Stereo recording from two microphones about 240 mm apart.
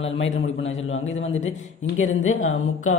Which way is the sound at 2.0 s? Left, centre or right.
Left.